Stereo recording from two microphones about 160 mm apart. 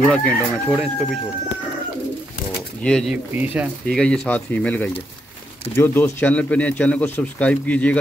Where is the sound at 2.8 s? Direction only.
5° left (ahead or behind).